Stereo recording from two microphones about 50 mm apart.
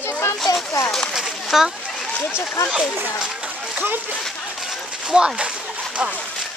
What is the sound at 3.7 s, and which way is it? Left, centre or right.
Speech, right.